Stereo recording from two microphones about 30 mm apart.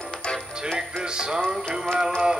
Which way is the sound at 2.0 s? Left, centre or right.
Right.